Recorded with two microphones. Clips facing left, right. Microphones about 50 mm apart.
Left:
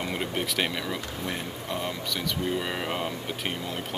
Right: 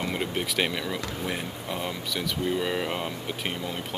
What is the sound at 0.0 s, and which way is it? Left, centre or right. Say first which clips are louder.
Speech: right 1 dB; centre.